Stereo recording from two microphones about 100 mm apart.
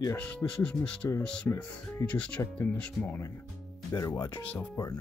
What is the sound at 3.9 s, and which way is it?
Speech, 40° left (ahead or behind).